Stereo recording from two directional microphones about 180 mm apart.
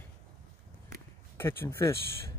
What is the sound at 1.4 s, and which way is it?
Speech, 15° left (ahead or behind).